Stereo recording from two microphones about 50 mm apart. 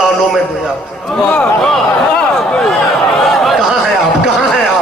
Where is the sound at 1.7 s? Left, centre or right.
Centre.